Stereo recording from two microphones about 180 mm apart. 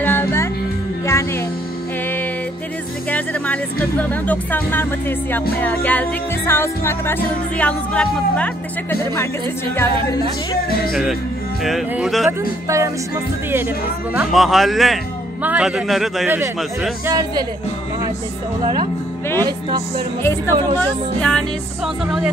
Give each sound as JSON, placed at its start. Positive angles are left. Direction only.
{"t": 0.0, "sound": "music", "side_deg": 10}
{"t": 4.1, "sound": "music", "side_deg": 10}
{"t": 10.9, "sound": "speech", "side_deg": 0}
{"t": 12.3, "sound": "speech", "side_deg": -15}
{"t": 14.1, "sound": "speech", "side_deg": 0}
{"t": 17.0, "sound": "speech", "side_deg": -20}
{"t": 19.3, "sound": "speech", "side_deg": -20}
{"t": 20.7, "sound": "music", "side_deg": 10}
{"t": 21.8, "sound": "speech", "side_deg": 0}